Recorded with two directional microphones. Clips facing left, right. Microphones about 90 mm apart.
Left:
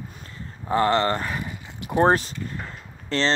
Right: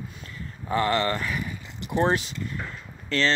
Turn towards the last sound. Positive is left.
turn(degrees=30)  # may be behind; listen again after turning